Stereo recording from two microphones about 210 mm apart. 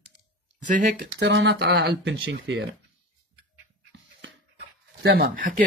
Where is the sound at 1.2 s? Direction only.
55° right (ahead or behind).